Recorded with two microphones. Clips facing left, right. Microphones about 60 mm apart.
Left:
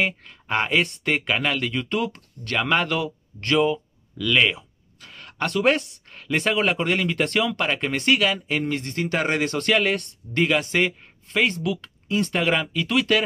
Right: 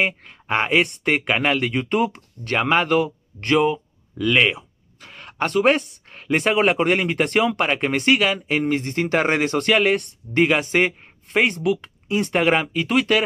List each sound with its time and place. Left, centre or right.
0.2 s speech: right
5.8 s a sound: centre
6.2 s speech: right
12.8 s speech: right